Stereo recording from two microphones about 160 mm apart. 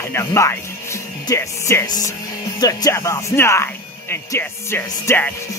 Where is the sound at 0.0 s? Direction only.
15° left (ahead or behind).